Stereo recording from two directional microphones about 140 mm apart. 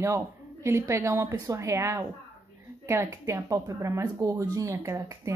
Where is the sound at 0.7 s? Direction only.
20° right (ahead or behind).